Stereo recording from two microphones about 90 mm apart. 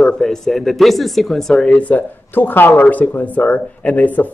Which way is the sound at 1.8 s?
15° left (ahead or behind).